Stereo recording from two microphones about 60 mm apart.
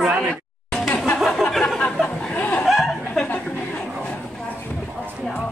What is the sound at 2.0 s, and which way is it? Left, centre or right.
Speech, centre.